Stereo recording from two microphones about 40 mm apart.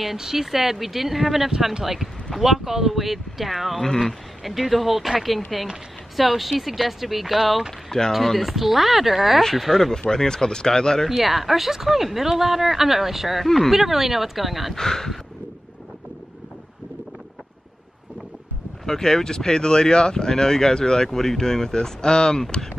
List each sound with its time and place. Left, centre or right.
0.0 s speech: centre
2.3 s speech: centre
10.0 s speech: centre
11.1 s speech: centre
13.7 s speech: centre
14.8 s speech: centre
18.9 s speech: centre